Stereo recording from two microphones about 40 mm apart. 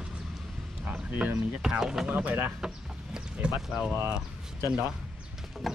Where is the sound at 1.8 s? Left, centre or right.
Centre.